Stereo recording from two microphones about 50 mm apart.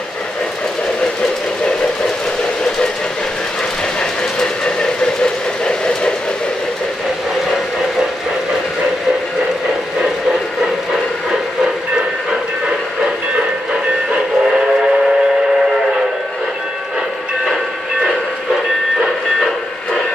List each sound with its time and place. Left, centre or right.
4.4 s train: centre
11.6 s train: centre
14.5 s train: centre